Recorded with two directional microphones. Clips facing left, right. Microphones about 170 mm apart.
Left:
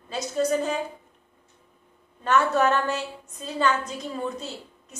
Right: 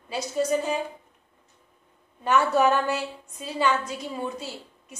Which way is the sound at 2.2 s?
10° right (ahead or behind).